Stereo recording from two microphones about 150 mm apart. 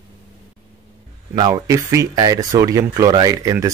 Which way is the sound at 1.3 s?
25° right (ahead or behind).